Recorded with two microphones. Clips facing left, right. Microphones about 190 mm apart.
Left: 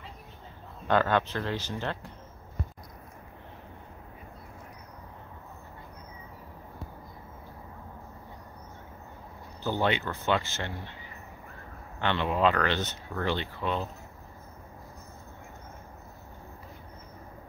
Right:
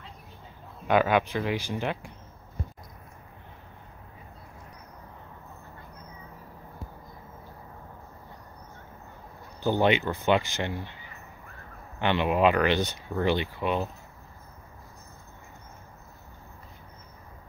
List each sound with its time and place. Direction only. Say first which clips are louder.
0.8 s speech: right 2 dB; 10° right (ahead or behind)
9.6 s speech: right 5 dB; 15° right (ahead or behind)
12.0 s speech: right 3 dB; 15° right (ahead or behind)